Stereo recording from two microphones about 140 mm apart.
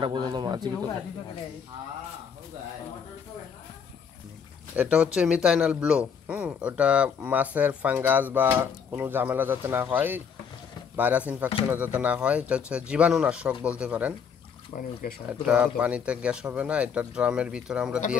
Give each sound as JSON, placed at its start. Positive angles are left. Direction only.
{"t": 0.0, "sound": "speech", "side_deg": -35}
{"t": 4.7, "sound": "speech", "side_deg": -10}
{"t": 14.8, "sound": "speech", "side_deg": 90}
{"t": 15.4, "sound": "speech", "side_deg": -5}